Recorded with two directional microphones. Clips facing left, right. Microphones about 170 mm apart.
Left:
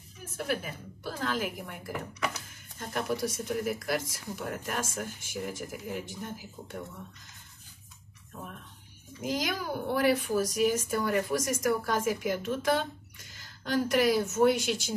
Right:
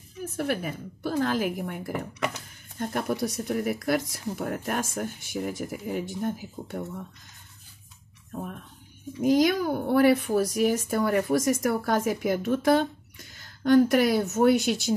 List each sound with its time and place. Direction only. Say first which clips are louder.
0.4 s speech: right 4 dB; 50° right (ahead or behind)
9.2 s a woman's voice: right 11 dB; 55° right (ahead or behind)